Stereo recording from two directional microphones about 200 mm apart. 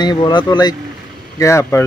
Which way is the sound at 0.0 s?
20° left (ahead or behind).